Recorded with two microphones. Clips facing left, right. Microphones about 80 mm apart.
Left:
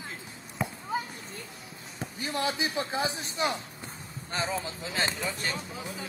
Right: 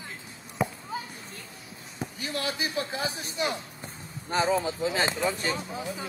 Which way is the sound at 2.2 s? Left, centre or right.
Left.